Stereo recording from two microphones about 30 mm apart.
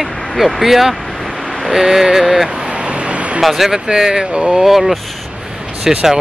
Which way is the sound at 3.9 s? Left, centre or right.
Right.